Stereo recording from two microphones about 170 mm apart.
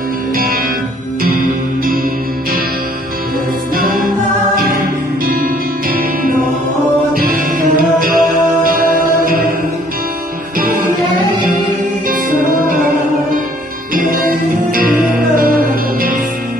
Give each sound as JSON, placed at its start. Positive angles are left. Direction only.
{"t": 1.2, "sound": "music", "side_deg": -55}
{"t": 3.7, "sound": "music", "side_deg": -55}
{"t": 13.9, "sound": "music", "side_deg": -55}